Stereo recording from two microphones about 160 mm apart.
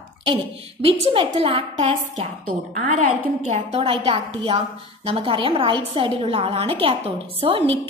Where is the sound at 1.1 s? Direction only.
35° right (ahead or behind).